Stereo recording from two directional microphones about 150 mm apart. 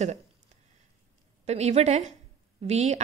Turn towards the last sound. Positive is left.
turn(degrees=-45)  # may be behind; listen again after turning